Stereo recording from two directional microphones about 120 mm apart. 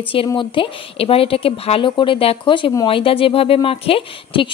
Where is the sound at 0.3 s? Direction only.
45° left (ahead or behind).